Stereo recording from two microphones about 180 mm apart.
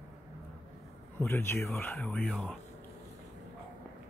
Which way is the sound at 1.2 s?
15° left (ahead or behind).